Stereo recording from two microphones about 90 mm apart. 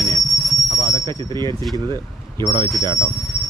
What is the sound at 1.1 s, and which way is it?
Speech, 55° right (ahead or behind).